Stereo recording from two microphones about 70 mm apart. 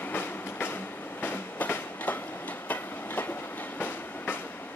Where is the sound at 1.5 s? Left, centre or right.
Left.